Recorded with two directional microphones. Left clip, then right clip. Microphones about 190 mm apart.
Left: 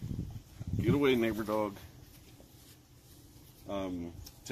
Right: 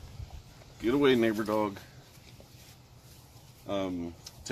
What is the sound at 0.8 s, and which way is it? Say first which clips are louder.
Speech: right 4 dB; 15° left (ahead or behind).